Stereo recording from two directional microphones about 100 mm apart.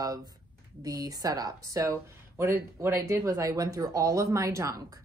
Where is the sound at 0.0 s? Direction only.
35° right (ahead or behind).